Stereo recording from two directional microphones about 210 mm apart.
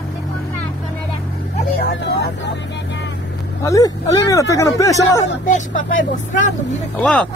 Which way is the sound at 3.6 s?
15° left (ahead or behind).